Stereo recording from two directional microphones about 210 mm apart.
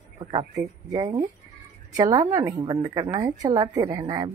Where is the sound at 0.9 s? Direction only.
20° right (ahead or behind).